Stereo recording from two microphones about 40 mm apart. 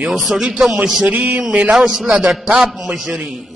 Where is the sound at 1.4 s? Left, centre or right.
Centre.